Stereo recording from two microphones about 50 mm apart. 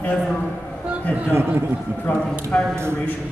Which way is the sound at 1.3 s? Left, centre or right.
Right.